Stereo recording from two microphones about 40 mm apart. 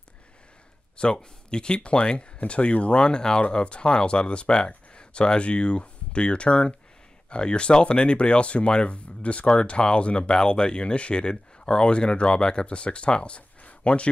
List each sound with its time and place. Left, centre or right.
0.9 s speech: left